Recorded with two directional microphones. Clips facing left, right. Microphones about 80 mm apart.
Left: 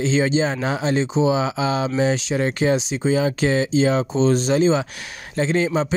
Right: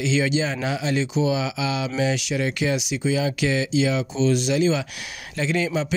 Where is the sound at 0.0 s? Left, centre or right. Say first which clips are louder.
Left 3 dB; left.